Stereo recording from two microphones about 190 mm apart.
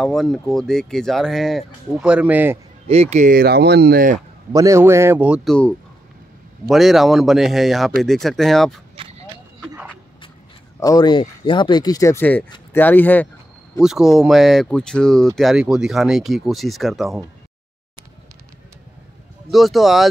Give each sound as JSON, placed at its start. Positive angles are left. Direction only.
{"t": 0.0, "sound": "speech", "side_deg": 0}
{"t": 2.9, "sound": "speech", "side_deg": -35}
{"t": 4.5, "sound": "a man's voice", "side_deg": -15}
{"t": 10.8, "sound": "speech", "side_deg": 20}
{"t": 13.7, "sound": "speech", "side_deg": 0}
{"t": 19.5, "sound": "speech", "side_deg": 0}